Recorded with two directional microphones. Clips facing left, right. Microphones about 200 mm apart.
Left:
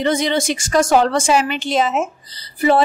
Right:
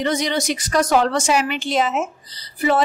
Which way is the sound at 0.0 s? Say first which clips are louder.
Left 3 dB; 25° left (ahead or behind).